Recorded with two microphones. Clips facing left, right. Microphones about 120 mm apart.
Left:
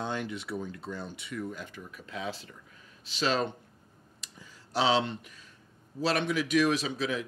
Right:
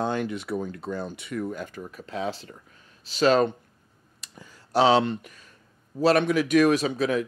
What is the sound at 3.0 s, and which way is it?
Speech, 45° right (ahead or behind).